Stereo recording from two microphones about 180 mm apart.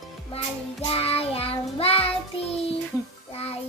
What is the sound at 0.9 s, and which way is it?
Child singing, 35° left (ahead or behind).